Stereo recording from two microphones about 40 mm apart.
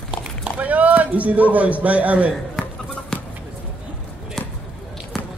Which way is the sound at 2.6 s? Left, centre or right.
Centre.